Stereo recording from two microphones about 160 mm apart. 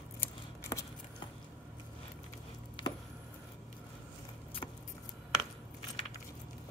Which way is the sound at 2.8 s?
30° left (ahead or behind).